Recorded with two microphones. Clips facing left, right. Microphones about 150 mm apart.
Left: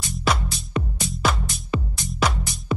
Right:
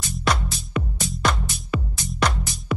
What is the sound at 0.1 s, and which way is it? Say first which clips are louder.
Music: even; centre (ahead or behind).